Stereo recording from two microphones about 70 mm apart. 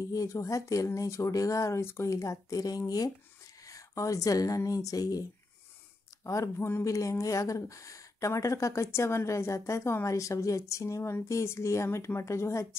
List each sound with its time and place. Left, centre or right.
0.1 s speech: left
2.0 s speech: left
6.2 s speech: left